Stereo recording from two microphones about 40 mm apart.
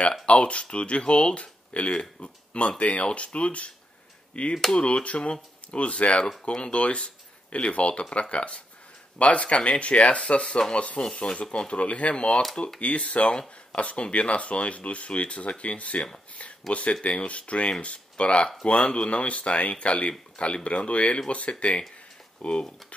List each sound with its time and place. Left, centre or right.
0.3 s speech: left
13.3 s speech: left